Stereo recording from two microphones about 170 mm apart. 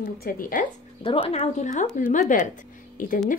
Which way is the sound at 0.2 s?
55° left (ahead or behind).